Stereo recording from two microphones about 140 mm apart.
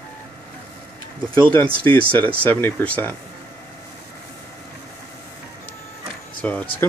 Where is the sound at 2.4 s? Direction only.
10° left (ahead or behind).